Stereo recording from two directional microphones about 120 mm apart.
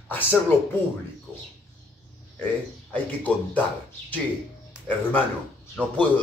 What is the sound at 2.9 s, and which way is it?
Speech, 10° left (ahead or behind).